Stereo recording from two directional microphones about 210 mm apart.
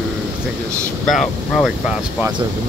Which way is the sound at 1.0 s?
Centre (ahead or behind).